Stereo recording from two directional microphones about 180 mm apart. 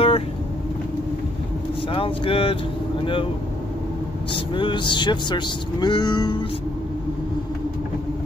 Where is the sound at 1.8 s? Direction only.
30° left (ahead or behind).